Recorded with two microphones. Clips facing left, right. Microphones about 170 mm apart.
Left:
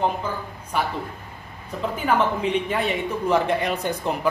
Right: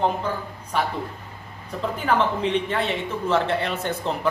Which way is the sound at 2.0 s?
10° left (ahead or behind).